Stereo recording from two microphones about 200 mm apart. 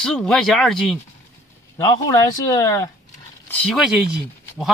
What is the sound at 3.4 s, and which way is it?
Speech, 5° left (ahead or behind).